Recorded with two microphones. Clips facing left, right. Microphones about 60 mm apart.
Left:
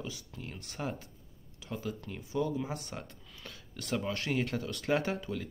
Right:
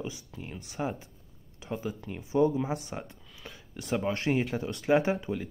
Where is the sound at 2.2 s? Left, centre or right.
Right.